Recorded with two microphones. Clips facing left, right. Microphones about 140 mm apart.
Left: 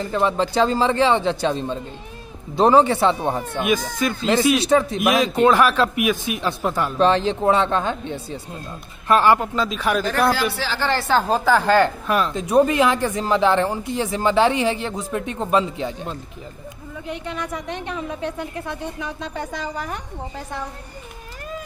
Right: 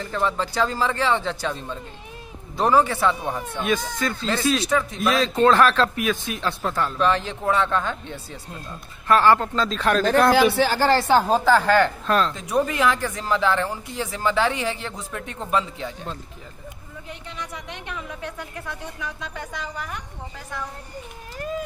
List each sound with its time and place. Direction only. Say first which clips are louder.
0.0 s a woman's voice: left 4 dB; 20° left (ahead or behind); by 3.4 s 35° left (ahead or behind)
3.5 s a man's voice: left 3 dB; 15° left (ahead or behind)
4.6 s a woman's voice: left 6 dB; 30° left (ahead or behind)
4.9 s a man's voice: left 3 dB; 15° left (ahead or behind)
7.0 s a man's voice: left 7 dB; 30° left (ahead or behind); by 10.3 s 10° left (ahead or behind)
10.3 s a man's voice: right 6 dB; 55° right (ahead or behind)
11.1 s a woman's voice: right 1 dB; 10° right (ahead or behind)
11.3 s a man's voice: even; 10° left (ahead or behind)
11.6 s speech: left 2 dB; 30° left (ahead or behind)
12.1 s a man's voice: even; 10° left (ahead or behind)
12.4 s speech: left 6 dB; 25° left (ahead or behind)
17.1 s a woman's voice: left 8 dB; 55° left (ahead or behind); by 20.0 s 35° left (ahead or behind)